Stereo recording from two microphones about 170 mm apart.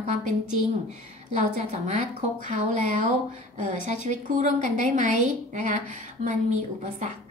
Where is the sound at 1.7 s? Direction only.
40° right (ahead or behind).